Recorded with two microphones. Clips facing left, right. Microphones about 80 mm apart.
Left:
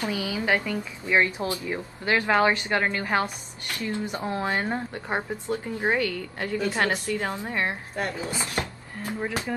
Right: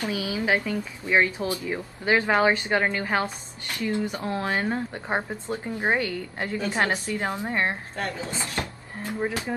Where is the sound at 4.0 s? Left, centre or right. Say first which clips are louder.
Right 1 dB; centre.